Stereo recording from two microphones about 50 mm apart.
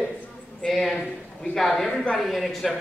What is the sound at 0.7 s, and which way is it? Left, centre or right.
Speech, centre.